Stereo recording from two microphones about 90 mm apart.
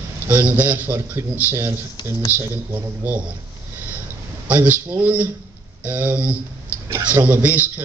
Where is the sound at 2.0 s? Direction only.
55° left (ahead or behind).